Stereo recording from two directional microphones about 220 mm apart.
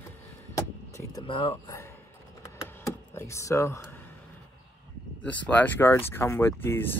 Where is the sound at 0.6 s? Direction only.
15° left (ahead or behind).